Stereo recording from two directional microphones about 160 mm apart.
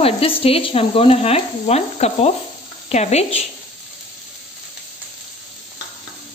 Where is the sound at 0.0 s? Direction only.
35° left (ahead or behind).